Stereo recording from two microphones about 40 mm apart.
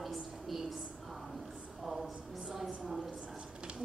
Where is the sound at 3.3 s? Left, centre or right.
Right.